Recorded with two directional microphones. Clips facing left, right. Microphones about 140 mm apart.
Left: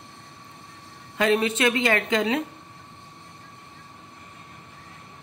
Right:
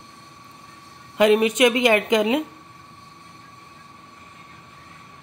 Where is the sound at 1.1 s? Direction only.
20° right (ahead or behind).